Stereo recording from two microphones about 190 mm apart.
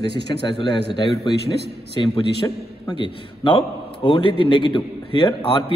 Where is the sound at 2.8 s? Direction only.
25° left (ahead or behind).